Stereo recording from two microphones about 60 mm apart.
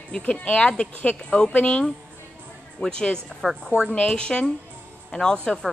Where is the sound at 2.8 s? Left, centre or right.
Left.